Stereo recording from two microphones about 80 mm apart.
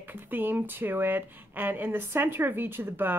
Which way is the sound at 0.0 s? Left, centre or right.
Right.